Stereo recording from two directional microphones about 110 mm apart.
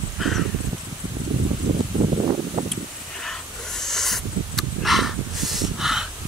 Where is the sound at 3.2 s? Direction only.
5° left (ahead or behind).